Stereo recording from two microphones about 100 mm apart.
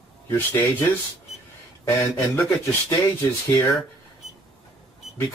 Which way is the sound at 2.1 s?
25° left (ahead or behind).